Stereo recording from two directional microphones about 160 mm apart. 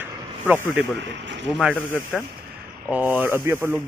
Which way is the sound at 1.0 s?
90° right.